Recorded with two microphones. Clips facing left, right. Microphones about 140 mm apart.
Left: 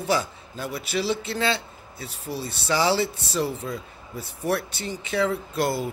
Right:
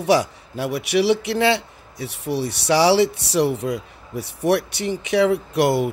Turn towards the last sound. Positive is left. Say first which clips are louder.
# right 7 dB
turn(degrees=-75)  # may be behind; listen again after turning